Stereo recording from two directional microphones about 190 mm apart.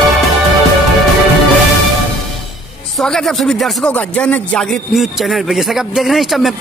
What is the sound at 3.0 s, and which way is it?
Speech, centre (ahead or behind).